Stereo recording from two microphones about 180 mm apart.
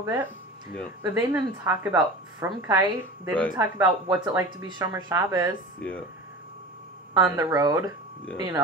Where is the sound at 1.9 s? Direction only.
20° right (ahead or behind).